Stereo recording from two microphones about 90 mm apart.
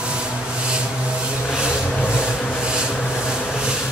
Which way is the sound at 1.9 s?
25° left (ahead or behind).